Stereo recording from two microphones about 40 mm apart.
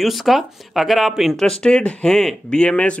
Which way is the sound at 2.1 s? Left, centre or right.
Centre.